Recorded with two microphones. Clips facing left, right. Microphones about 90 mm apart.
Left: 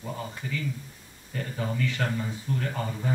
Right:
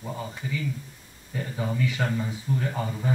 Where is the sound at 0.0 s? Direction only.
5° right (ahead or behind).